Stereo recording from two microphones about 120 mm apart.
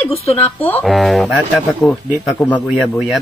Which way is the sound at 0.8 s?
Centre (ahead or behind).